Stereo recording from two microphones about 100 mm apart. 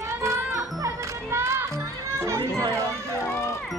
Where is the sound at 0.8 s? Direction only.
30° right (ahead or behind).